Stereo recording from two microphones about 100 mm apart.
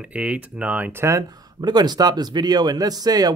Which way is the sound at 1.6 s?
45° right (ahead or behind).